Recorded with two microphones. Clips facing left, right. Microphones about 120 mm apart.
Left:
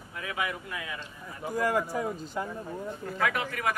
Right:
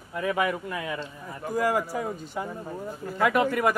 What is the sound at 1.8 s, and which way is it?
Speech, 10° right (ahead or behind).